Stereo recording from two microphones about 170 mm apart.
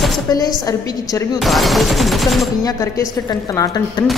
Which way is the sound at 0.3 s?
20° left (ahead or behind).